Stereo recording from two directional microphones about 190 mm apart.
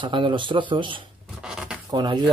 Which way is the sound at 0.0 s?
25° right (ahead or behind).